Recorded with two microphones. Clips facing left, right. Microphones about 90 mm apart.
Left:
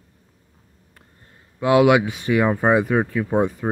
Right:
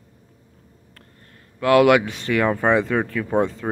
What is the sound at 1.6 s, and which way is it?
Speech, 10° left (ahead or behind).